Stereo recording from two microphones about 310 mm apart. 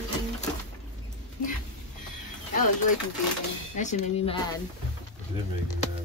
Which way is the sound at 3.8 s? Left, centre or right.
Left.